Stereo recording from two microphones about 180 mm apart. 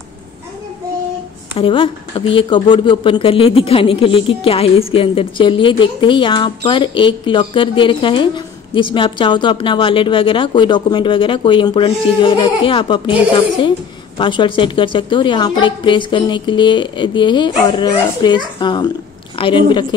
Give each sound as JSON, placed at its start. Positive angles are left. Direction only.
{"t": 1.5, "sound": "speech", "side_deg": 30}